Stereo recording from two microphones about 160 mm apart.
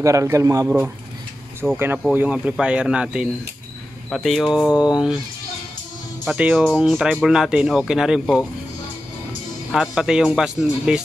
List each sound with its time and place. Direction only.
0.0 s a man's voice: 20° right (ahead or behind)
0.7 s speech: 10° right (ahead or behind)
6.2 s speech: 5° right (ahead or behind)
9.7 s speech: 5° right (ahead or behind)